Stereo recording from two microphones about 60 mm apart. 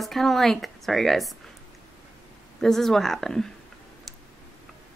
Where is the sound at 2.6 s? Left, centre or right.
Centre.